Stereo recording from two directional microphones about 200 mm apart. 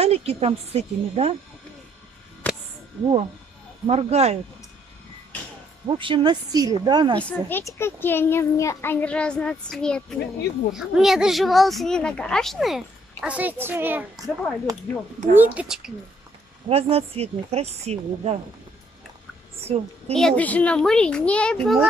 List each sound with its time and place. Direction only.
0.0 s speech: 30° right (ahead or behind)
2.4 s a sound: 10° left (ahead or behind)
3.8 s speech: 30° right (ahead or behind)
5.9 s a woman's voice: 25° right (ahead or behind)
7.2 s a child's voice: 10° left (ahead or behind)
16.6 s speech: 30° right (ahead or behind)
19.6 s a child's voice: 30° right (ahead or behind)
20.2 s speech: 5° left (ahead or behind)